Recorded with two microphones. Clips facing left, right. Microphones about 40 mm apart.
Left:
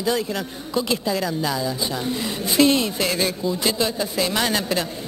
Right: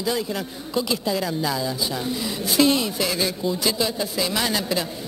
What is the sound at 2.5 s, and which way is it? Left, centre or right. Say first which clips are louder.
Speech: left 2 dB; centre.